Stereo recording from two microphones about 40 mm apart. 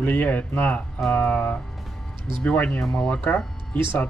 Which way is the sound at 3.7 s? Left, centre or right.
Left.